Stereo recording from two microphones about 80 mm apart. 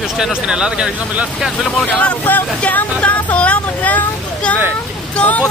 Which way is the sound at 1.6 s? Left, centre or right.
Centre.